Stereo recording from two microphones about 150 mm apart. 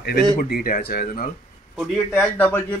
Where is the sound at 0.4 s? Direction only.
75° left (ahead or behind).